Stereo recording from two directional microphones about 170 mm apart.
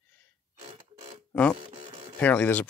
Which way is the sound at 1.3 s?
5° left (ahead or behind).